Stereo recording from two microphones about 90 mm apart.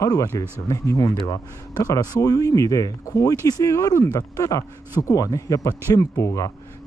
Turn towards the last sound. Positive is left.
turn(degrees=40)  # may be behind; listen again after turning